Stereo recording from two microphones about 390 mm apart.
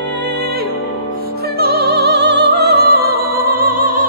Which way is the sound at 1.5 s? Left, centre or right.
Right.